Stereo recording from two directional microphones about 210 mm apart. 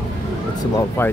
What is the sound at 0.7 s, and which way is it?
Speech, 10° left (ahead or behind).